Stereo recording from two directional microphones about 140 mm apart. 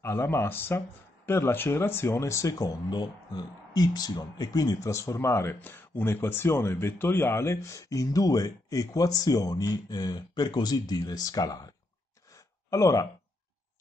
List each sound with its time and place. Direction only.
0.0 s speech: 20° left (ahead or behind)